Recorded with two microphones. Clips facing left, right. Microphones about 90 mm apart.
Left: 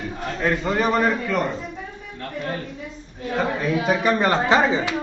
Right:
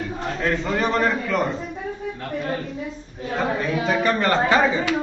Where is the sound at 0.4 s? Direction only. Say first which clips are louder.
Left 2 dB; 5° left (ahead or behind).